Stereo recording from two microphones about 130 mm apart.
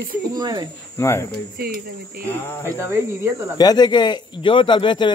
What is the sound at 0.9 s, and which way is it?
Speech, 25° left (ahead or behind).